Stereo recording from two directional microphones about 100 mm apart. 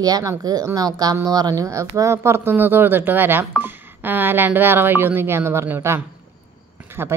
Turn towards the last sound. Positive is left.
turn(degrees=-25)  # may be behind; listen again after turning